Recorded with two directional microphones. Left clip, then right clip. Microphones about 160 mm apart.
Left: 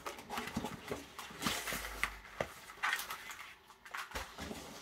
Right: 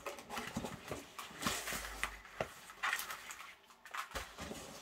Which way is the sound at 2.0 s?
5° left (ahead or behind).